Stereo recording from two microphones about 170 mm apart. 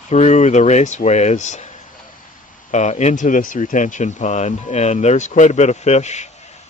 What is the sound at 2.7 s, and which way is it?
A man's voice, 45° left (ahead or behind).